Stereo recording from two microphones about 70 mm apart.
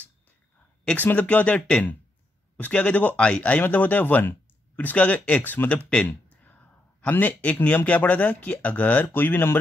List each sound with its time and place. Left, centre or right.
0.9 s a man's voice: left